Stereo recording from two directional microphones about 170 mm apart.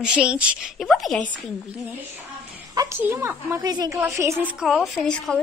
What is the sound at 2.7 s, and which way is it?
A woman's voice, 20° right (ahead or behind).